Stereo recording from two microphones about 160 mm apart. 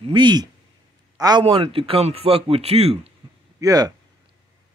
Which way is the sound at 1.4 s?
35° right (ahead or behind).